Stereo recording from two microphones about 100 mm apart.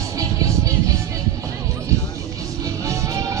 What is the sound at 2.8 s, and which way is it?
Music, 30° right (ahead or behind).